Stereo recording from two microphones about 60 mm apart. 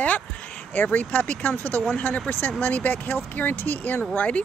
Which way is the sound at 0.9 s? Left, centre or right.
Left.